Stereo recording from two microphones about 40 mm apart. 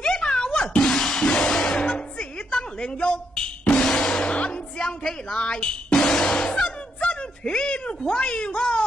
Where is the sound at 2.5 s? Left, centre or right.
Left.